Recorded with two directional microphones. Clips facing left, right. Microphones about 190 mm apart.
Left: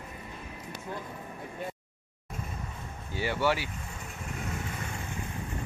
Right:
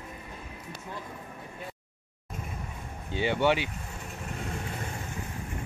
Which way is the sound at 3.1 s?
20° right (ahead or behind).